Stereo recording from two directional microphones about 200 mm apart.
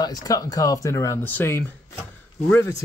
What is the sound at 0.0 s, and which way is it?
Speech, 20° left (ahead or behind).